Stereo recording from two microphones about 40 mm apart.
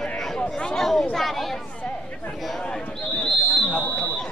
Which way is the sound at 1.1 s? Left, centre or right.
Centre.